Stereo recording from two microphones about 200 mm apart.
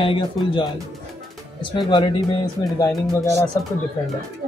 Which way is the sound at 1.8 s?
25° left (ahead or behind).